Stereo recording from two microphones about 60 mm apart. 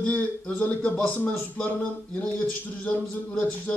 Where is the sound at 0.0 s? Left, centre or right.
Left.